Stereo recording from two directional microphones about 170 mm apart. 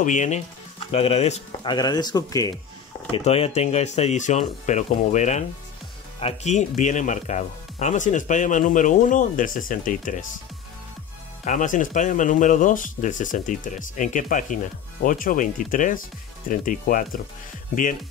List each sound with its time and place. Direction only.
0.0 s speech: 45° left (ahead or behind)
0.7 s speech: 35° left (ahead or behind); by 2.5 s 20° left (ahead or behind)
3.1 s speech: 35° left (ahead or behind); by 10.2 s 50° left (ahead or behind)
11.4 s speech: 50° left (ahead or behind)